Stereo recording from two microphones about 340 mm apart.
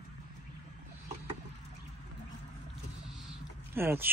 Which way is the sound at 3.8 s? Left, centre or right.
Centre.